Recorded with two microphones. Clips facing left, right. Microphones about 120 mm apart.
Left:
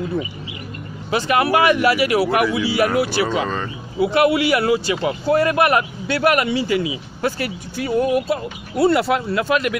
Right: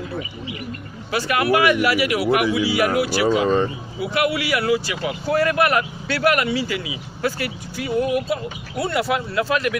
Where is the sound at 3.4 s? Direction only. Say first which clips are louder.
Right 6 dB; 30° right (ahead or behind).